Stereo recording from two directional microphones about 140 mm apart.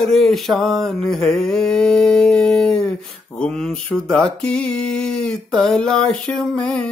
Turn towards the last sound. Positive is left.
turn(degrees=5)  # may be behind; listen again after turning